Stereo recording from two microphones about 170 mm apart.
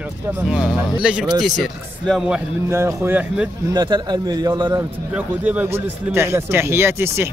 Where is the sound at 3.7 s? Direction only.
25° right (ahead or behind).